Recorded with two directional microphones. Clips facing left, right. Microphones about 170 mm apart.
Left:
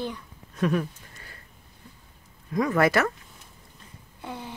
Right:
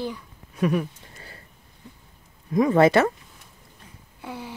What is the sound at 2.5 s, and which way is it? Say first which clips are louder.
Speech: right 5 dB; 25° right (ahead or behind).